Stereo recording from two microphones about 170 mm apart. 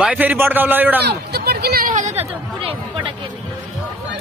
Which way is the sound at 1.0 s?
70° right (ahead or behind).